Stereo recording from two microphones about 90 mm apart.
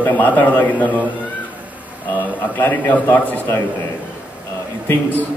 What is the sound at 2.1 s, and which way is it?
A man's voice, 20° left (ahead or behind).